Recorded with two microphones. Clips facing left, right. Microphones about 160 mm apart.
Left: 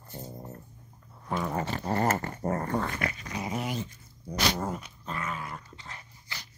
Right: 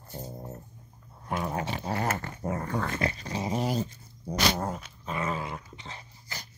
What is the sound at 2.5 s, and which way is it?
Dog, 40° left (ahead or behind).